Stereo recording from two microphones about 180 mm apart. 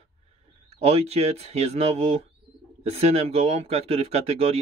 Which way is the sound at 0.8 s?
35° right (ahead or behind).